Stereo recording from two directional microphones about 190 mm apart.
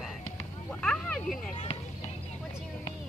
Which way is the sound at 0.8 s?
5° left (ahead or behind).